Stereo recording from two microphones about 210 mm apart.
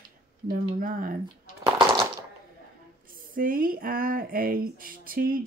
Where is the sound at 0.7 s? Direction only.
40° right (ahead or behind).